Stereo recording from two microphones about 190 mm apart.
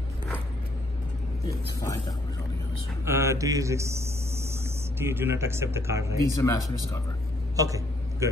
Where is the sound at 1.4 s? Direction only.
20° left (ahead or behind).